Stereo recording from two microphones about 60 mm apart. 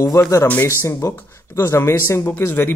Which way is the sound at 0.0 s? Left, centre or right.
Left.